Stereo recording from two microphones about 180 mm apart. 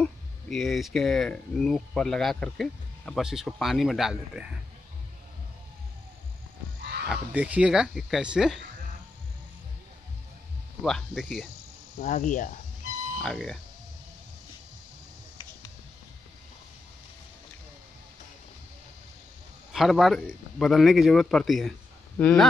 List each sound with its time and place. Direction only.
0.0 s speech: centre (ahead or behind)
7.1 s speech: 10° right (ahead or behind)
10.8 s speech: centre (ahead or behind)
12.0 s speech: 45° left (ahead or behind)
13.2 s speech: centre (ahead or behind)
19.7 s a man's voice: centre (ahead or behind)